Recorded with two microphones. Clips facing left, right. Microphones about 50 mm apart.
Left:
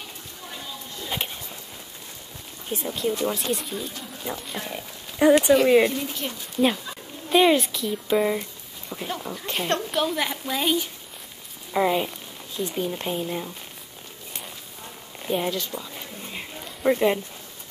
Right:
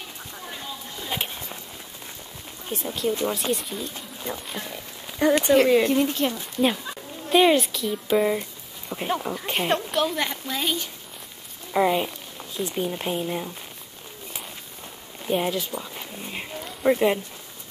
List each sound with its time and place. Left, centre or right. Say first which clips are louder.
1.0 s a sound: even; centre
2.7 s speech: even; centre
5.2 s speech: left 2 dB; centre
5.9 s speech: right 7 dB; right
7.2 s speech: even; centre
8.9 s speech: right 5 dB; right
9.8 s speech: even; centre
15.2 s speech: right 1 dB; centre
15.8 s a sound: right 1 dB; centre
16.6 s a sound: even; centre